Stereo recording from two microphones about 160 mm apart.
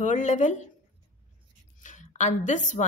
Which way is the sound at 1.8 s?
50° left (ahead or behind).